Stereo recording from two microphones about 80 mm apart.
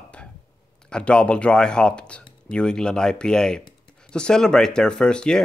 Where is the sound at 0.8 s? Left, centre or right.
Centre.